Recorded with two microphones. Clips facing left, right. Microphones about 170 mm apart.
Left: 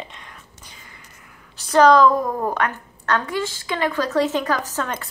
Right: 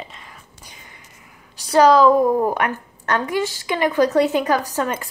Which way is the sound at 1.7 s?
10° right (ahead or behind).